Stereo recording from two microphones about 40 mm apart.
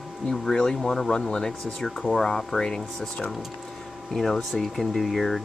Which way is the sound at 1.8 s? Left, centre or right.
Centre.